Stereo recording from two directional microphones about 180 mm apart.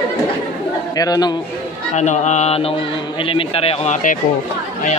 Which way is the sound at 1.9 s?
40° left (ahead or behind).